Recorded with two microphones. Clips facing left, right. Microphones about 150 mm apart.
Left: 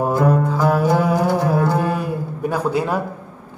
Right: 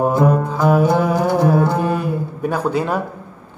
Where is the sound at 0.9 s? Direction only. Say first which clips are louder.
Right 1 dB; 5° left (ahead or behind).